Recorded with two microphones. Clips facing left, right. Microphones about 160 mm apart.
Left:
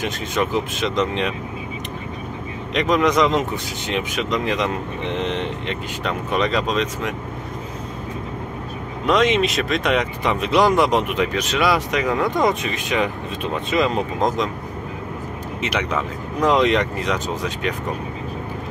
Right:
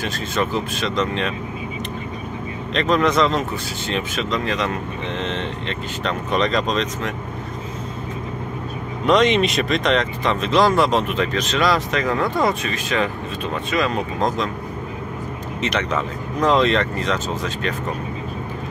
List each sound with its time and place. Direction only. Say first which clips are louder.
0.0 s speech: even; 15° left (ahead or behind)
2.7 s speech: even; 10° left (ahead or behind)
9.0 s speech: right 1 dB; 5° left (ahead or behind)
15.6 s speech: right 1 dB; 10° left (ahead or behind)